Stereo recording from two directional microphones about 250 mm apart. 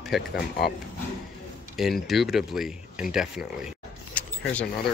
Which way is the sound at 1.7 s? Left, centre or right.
Centre.